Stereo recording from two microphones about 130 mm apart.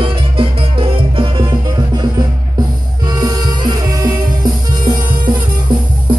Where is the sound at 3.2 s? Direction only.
30° right (ahead or behind).